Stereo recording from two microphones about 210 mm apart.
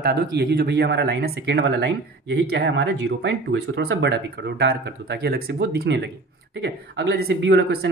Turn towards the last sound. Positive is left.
turn(degrees=-55)  # may be behind; listen again after turning